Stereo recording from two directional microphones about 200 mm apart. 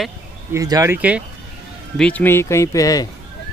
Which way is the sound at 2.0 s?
5° left (ahead or behind).